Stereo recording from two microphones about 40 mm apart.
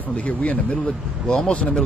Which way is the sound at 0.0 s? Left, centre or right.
Left.